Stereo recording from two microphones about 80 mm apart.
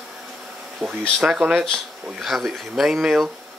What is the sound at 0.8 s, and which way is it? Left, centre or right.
Speech, centre.